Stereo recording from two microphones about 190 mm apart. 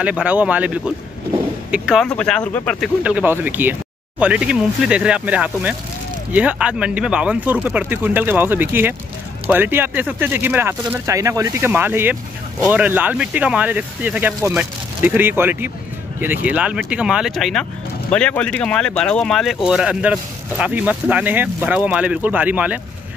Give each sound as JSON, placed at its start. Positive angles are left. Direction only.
{"t": 0.0, "sound": "speech", "side_deg": -5}
{"t": 3.0, "sound": "speech", "side_deg": -5}